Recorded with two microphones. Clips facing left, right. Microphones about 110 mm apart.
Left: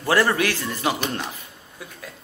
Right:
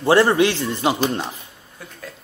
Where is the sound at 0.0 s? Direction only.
25° right (ahead or behind).